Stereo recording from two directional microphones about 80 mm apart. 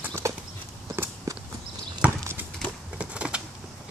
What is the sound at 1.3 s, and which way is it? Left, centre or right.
Walk, right.